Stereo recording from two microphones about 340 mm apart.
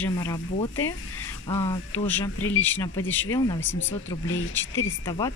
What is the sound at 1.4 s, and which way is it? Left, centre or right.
Speech, centre.